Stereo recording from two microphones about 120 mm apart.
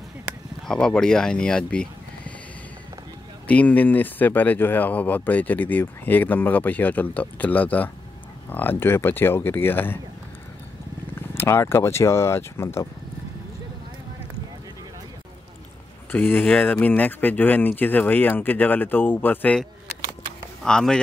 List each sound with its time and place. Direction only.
0.7 s speech: 5° left (ahead or behind)
3.4 s speech: 10° left (ahead or behind)
11.1 s speech: 20° left (ahead or behind)
16.1 s speech: 15° left (ahead or behind)